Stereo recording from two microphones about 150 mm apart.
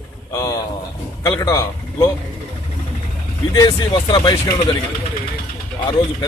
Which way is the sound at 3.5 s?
25° left (ahead or behind).